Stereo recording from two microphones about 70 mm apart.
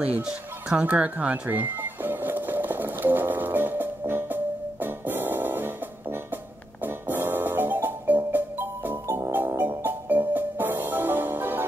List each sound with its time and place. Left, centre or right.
0.0 s speech: centre
1.5 s music: right